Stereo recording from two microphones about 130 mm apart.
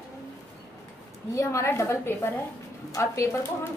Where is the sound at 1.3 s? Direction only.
20° left (ahead or behind).